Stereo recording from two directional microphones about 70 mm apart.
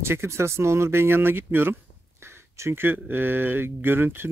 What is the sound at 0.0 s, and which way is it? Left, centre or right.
Speech, right.